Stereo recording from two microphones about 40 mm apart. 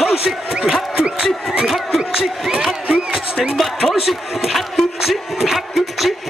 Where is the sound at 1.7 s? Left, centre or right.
Centre.